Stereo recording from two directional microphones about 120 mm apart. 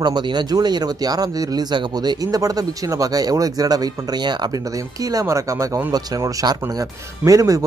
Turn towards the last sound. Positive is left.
turn(degrees=-30)  # may be behind; listen again after turning